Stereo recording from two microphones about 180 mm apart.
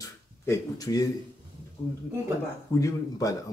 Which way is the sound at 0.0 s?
20° left (ahead or behind).